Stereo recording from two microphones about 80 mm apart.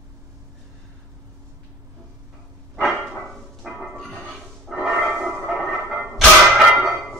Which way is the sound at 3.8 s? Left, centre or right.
Centre.